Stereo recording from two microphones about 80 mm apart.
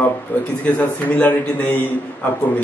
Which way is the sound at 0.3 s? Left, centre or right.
Left.